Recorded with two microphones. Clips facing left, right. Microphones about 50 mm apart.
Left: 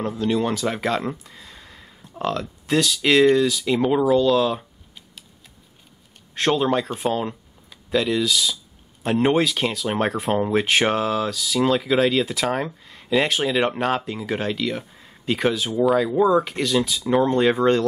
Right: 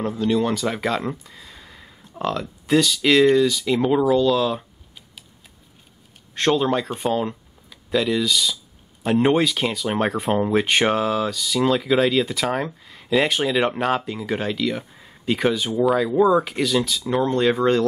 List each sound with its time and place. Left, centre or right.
0.0 s speech: centre
6.3 s speech: centre